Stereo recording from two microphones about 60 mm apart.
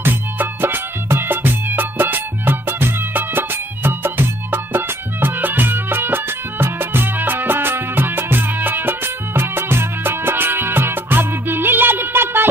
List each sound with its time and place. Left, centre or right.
0.0 s music: right